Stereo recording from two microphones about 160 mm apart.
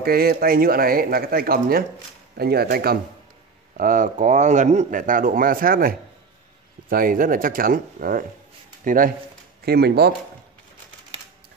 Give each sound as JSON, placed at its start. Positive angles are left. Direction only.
{"t": 0.0, "sound": "speech", "side_deg": -70}
{"t": 3.7, "sound": "speech", "side_deg": -60}
{"t": 9.7, "sound": "speech", "side_deg": -85}